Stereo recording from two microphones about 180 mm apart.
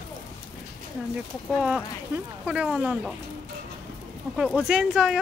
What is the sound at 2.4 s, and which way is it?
Speech, 5° right (ahead or behind).